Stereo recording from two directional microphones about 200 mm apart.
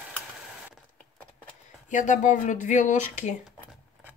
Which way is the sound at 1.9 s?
40° left (ahead or behind).